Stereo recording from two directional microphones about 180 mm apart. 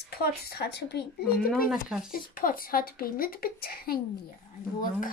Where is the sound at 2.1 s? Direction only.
50° left (ahead or behind).